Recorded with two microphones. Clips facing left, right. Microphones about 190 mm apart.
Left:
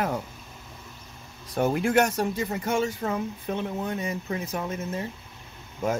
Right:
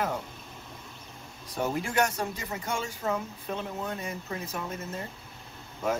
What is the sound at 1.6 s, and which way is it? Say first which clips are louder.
Speech: left 6 dB; 60° left (ahead or behind).